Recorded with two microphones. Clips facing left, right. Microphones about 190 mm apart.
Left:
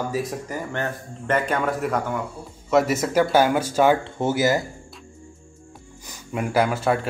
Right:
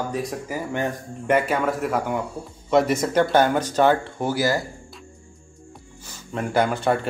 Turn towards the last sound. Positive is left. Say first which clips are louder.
# even
turn(degrees=0)  # may be behind; listen again after turning